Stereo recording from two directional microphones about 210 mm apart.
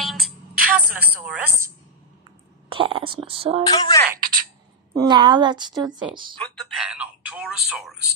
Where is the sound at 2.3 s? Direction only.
25° right (ahead or behind).